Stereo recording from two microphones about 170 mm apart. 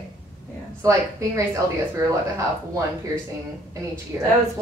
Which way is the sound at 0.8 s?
20° right (ahead or behind).